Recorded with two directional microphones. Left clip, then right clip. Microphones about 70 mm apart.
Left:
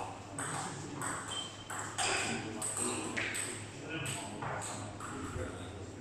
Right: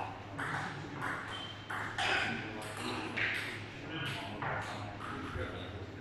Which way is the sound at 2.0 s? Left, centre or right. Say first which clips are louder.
Right 1 dB; centre.